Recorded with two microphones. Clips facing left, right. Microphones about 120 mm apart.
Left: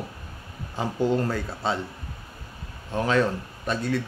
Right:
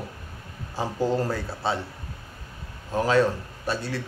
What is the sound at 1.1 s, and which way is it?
Speech, 5° right (ahead or behind).